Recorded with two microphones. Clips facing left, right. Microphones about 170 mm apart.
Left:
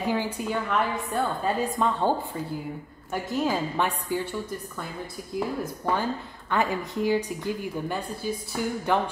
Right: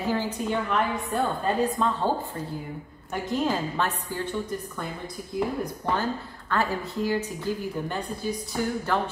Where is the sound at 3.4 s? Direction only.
10° left (ahead or behind).